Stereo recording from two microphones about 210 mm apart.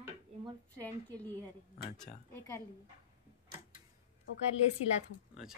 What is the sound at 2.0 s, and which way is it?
Speech, 10° left (ahead or behind).